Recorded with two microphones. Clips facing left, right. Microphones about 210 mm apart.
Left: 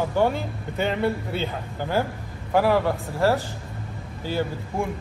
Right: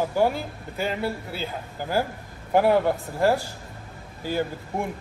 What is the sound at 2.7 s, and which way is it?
Speech, 15° right (ahead or behind).